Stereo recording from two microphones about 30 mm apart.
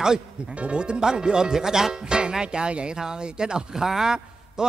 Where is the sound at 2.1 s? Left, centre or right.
Right.